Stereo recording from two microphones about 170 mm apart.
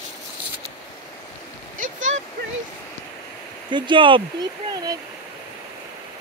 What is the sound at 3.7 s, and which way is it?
Speech, 30° right (ahead or behind).